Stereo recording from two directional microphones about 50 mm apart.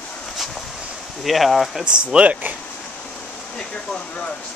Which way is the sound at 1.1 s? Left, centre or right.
Centre.